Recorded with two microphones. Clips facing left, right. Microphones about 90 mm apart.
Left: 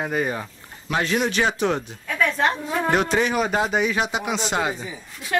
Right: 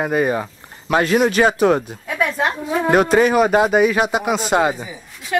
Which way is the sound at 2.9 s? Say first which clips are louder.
Right 8 dB; 45° right (ahead or behind).